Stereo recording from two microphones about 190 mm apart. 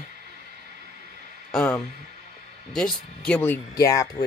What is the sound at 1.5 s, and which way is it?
Speech, 5° left (ahead or behind).